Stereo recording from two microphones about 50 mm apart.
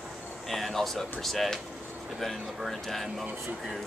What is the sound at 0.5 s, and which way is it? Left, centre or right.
Speech, centre.